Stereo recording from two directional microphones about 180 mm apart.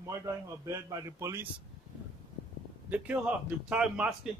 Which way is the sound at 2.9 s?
10° right (ahead or behind).